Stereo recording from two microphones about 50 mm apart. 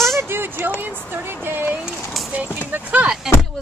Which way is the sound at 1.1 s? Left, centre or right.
Right.